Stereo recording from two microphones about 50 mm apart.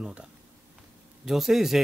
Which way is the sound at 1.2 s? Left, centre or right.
Centre.